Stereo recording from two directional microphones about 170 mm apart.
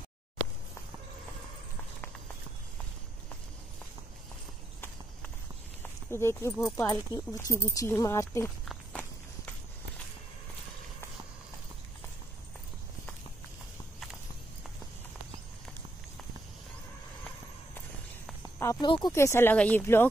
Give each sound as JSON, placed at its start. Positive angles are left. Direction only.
{"t": 5.8, "sound": "walk", "side_deg": 15}
{"t": 6.8, "sound": "speech", "side_deg": 20}
{"t": 18.6, "sound": "a sound", "side_deg": 20}
{"t": 18.9, "sound": "speech", "side_deg": 25}